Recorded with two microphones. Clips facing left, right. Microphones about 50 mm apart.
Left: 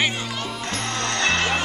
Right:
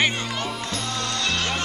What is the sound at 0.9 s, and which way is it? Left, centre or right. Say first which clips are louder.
Music: left 5 dB; left.